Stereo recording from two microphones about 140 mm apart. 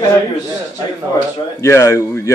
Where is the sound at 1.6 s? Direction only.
20° left (ahead or behind).